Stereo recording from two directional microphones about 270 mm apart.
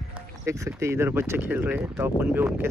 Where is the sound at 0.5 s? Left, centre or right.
Centre.